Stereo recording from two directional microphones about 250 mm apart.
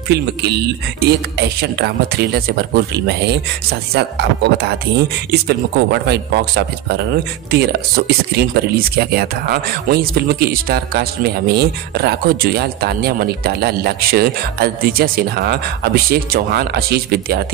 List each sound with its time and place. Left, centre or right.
0.1 s speech: right